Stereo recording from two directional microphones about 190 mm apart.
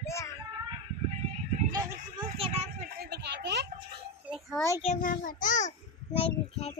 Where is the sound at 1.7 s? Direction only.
25° right (ahead or behind).